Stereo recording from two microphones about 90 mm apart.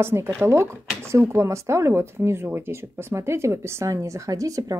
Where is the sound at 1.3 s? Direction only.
30° right (ahead or behind).